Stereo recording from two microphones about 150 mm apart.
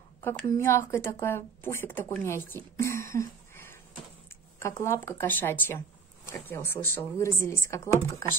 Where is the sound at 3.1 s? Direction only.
15° left (ahead or behind).